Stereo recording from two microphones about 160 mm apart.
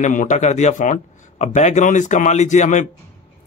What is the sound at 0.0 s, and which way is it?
Speech, 50° left (ahead or behind).